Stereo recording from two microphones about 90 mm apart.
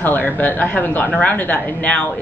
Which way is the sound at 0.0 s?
20° left (ahead or behind).